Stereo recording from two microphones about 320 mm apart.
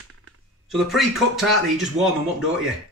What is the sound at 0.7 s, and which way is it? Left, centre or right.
Speech, centre.